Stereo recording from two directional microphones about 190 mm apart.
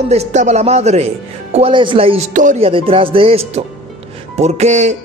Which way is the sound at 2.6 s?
30° right (ahead or behind).